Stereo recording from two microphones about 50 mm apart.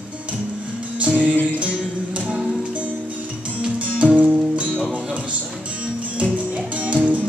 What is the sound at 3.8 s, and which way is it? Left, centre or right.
Music, right.